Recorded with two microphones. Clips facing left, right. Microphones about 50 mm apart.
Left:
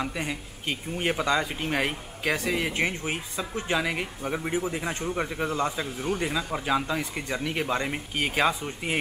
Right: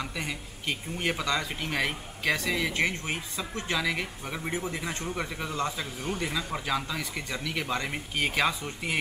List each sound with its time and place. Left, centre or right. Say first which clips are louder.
0.0 s speech: left 3 dB; centre
7.9 s speech: left 1 dB; centre
8.4 s speech: left 3 dB; centre